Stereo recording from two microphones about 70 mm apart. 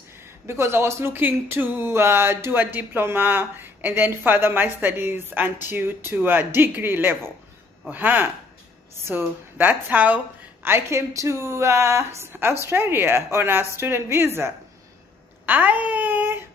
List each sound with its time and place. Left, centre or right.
0.5 s speech: right
15.4 s speech: right